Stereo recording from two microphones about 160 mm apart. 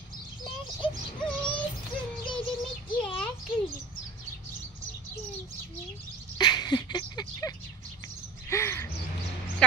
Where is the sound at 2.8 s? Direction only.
30° left (ahead or behind).